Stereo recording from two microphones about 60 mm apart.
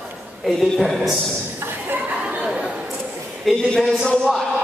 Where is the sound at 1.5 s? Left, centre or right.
Right.